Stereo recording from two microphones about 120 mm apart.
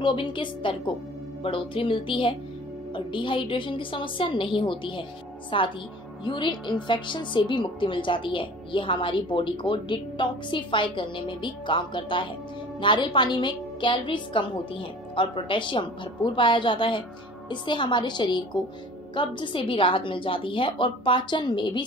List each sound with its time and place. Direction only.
0.0 s a woman's voice: 40° left (ahead or behind)